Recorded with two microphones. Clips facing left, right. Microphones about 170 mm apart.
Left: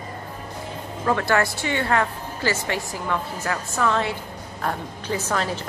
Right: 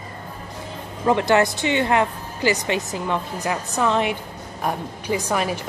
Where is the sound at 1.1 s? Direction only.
20° right (ahead or behind).